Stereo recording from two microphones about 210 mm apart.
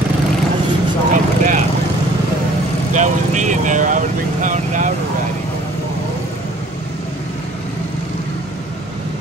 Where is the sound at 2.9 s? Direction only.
35° right (ahead or behind).